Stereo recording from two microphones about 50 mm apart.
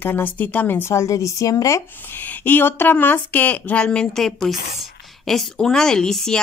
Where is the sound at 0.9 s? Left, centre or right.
Left.